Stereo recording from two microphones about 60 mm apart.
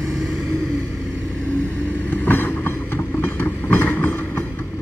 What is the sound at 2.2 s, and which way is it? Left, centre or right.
Train, left.